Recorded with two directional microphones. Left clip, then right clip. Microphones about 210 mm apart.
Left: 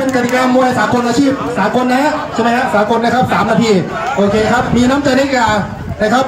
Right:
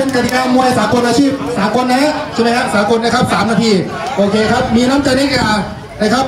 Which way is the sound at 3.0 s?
30° left (ahead or behind).